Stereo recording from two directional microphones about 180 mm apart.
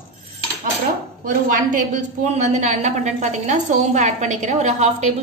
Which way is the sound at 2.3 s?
40° right (ahead or behind).